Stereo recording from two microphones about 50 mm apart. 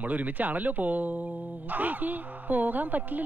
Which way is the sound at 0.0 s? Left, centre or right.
Right.